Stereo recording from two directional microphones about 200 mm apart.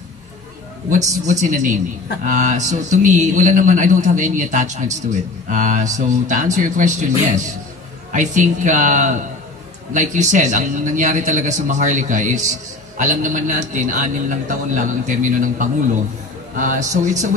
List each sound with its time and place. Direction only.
0.8 s a man's voice: 35° right (ahead or behind)